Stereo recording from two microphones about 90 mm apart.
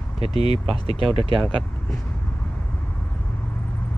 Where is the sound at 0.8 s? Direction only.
90° right.